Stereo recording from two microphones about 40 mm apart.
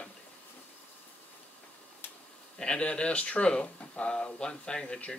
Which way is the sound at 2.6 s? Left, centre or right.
Left.